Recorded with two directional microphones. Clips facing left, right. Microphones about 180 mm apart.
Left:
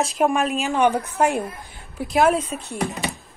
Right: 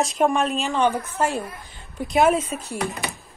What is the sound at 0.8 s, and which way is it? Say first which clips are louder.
A woman's voice: left 3 dB; 15° left (ahead or behind).